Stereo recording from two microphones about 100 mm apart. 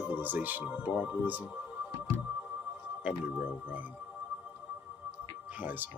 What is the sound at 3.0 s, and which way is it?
Speech, 15° right (ahead or behind).